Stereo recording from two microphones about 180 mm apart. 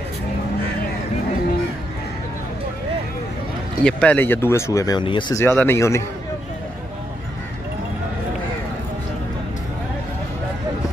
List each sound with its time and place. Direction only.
3.8 s speech: 5° left (ahead or behind); by 5.4 s 25° left (ahead or behind)
5.4 s speech: 15° left (ahead or behind)